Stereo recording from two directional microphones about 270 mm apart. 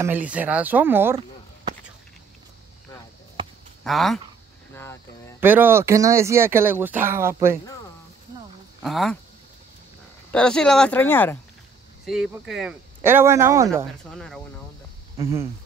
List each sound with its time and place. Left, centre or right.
0.0 s speech: centre
3.8 s speech: centre
4.7 s a sound: centre
5.4 s speech: centre
8.8 s speech: centre
10.3 s speech: centre
14.1 s speech: centre